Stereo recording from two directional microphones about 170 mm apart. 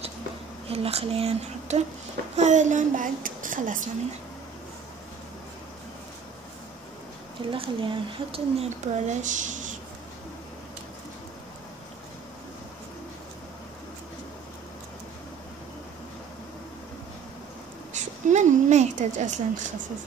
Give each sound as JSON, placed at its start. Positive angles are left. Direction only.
{"t": 0.7, "sound": "speech", "side_deg": -35}
{"t": 7.5, "sound": "speech", "side_deg": -30}
{"t": 17.9, "sound": "a sound", "side_deg": -45}